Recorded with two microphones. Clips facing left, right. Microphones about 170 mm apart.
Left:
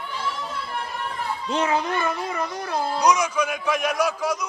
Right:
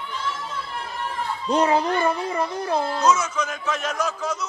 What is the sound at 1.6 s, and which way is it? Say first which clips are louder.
A child's voice: right 3 dB; 35° right (ahead or behind).